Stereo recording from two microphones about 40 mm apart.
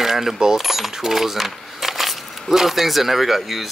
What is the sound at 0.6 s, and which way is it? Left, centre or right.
Speech, centre.